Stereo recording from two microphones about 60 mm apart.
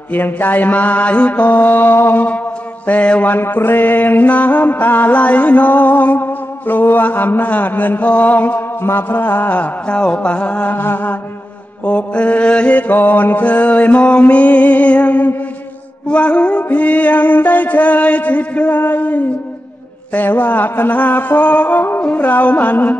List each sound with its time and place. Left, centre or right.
0.1 s mantra: left
2.9 s mantra: left
3.3 s mantra: left
9.8 s mantra: centre